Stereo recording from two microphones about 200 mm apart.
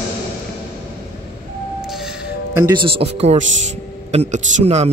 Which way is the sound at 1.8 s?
Centre (ahead or behind).